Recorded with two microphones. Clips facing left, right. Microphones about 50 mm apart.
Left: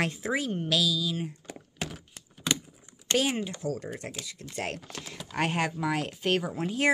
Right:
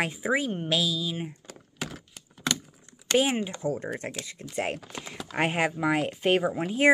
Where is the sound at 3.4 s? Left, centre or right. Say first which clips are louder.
Right 3 dB; right.